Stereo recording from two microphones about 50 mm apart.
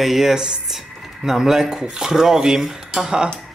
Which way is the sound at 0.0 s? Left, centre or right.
Centre.